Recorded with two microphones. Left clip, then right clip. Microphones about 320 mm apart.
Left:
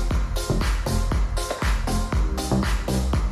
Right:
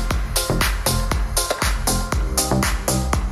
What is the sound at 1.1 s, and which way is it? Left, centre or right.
Music, right.